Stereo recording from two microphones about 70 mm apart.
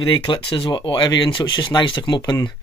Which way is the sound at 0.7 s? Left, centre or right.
Left.